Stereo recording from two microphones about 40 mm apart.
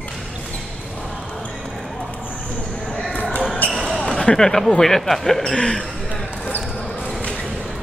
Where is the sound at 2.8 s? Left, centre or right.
Centre.